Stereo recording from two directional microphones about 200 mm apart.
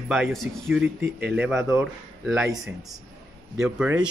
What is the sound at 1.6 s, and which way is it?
Speech, 15° right (ahead or behind).